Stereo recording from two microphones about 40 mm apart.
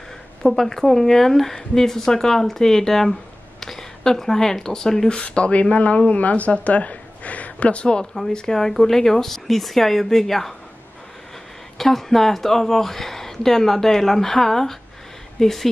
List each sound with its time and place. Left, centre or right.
0.4 s a woman's voice: centre
5.1 s speech: left
8.0 s a woman's voice: centre
11.8 s a woman's voice: centre